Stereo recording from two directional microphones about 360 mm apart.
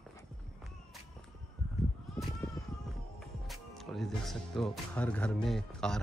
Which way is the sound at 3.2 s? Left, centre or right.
Centre.